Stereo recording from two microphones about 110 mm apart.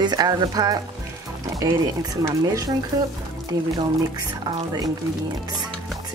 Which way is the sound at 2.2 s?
30° right (ahead or behind).